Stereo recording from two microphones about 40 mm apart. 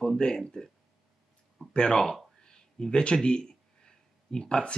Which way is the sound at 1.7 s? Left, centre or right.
Left.